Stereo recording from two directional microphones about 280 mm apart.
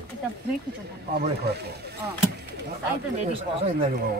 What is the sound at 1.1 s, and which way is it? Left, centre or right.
Speech, right.